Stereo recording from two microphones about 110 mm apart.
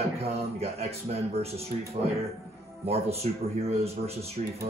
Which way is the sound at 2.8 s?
65° right (ahead or behind).